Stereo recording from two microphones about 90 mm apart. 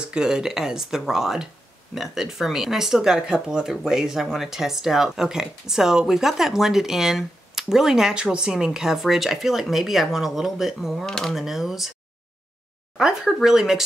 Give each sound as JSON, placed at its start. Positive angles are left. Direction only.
{"t": 0.1, "sound": "speech", "side_deg": -5}
{"t": 12.9, "sound": "speech", "side_deg": -5}